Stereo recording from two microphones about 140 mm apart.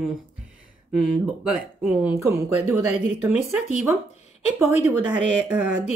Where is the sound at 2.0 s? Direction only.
20° right (ahead or behind).